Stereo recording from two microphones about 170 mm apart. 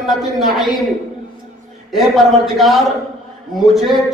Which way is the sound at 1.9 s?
Centre (ahead or behind).